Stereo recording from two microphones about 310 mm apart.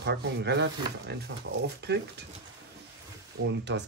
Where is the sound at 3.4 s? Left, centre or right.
Right.